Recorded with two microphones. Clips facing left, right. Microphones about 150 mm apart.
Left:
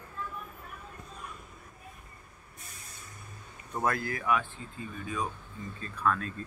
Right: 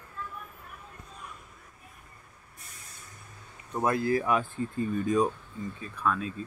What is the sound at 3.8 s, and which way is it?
Speech, 25° right (ahead or behind).